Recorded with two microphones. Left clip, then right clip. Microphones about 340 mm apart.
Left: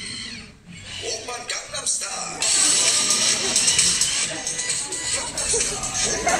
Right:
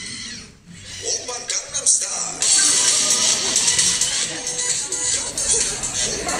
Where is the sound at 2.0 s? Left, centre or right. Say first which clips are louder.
Right 2 dB; centre.